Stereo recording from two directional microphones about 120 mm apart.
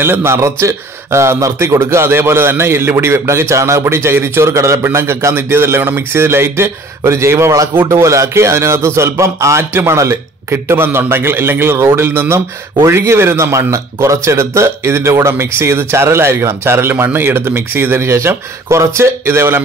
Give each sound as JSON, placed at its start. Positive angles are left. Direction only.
{"t": 0.0, "sound": "a man's voice", "side_deg": -20}